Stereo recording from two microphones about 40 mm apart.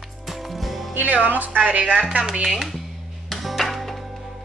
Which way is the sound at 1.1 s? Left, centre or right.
Right.